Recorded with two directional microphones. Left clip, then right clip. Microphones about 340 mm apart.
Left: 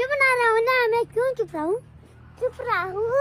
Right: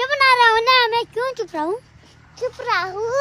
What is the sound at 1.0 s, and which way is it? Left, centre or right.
Speech, centre.